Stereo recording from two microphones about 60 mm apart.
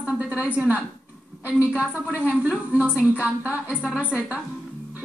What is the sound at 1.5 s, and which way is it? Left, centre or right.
A woman's voice, right.